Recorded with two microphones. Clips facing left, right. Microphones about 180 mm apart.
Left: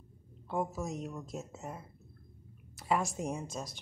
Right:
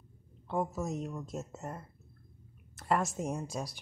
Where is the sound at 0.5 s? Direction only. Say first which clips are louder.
Right 1 dB; centre (ahead or behind).